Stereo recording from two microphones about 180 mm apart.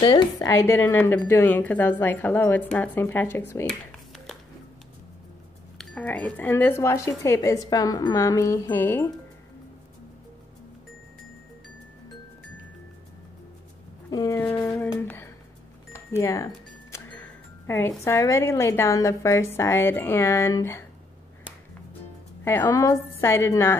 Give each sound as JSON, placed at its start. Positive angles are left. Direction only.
{"t": 0.0, "sound": "a woman's voice", "side_deg": 25}
{"t": 0.5, "sound": "speech", "side_deg": 15}
{"t": 5.8, "sound": "speech", "side_deg": 5}
{"t": 14.1, "sound": "speech", "side_deg": 20}
{"t": 16.9, "sound": "music", "side_deg": 10}
{"t": 18.0, "sound": "speech", "side_deg": 15}
{"t": 22.4, "sound": "speech", "side_deg": 15}